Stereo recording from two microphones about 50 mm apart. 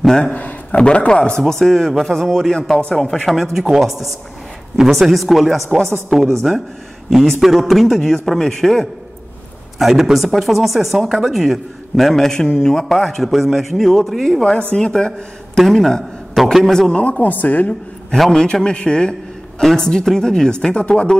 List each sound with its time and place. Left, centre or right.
0.0 s a man's voice: centre
0.3 s speech: left
1.4 s speech: centre
9.8 s speech: centre
14.8 s speech: centre
16.9 s speech: left
18.1 s speech: centre
18.4 s speech: centre